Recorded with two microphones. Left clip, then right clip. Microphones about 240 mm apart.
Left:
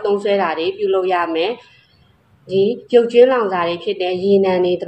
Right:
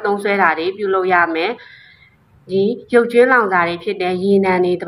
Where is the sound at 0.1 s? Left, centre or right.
Right.